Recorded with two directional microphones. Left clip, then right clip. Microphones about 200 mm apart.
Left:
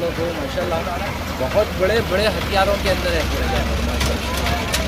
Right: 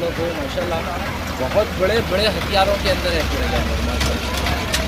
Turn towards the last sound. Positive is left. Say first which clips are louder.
# even
turn(degrees=50)  # may be behind; listen again after turning